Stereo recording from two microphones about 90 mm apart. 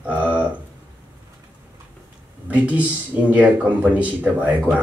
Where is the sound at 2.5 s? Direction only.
15° right (ahead or behind).